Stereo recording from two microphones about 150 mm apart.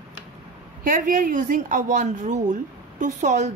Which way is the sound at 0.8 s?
65° right (ahead or behind).